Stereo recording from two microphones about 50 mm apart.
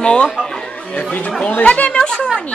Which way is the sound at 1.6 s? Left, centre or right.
Left.